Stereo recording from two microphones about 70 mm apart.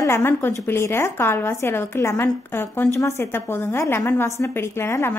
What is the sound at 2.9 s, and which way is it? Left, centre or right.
A woman's voice, left.